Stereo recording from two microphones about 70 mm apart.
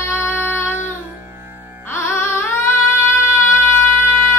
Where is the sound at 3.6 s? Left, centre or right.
Left.